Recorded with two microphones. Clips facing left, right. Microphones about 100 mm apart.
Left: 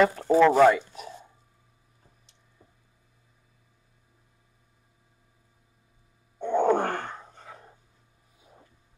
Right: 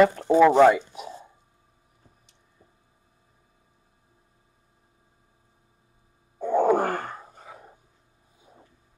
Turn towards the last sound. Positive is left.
turn(degrees=-10)  # may be behind; listen again after turning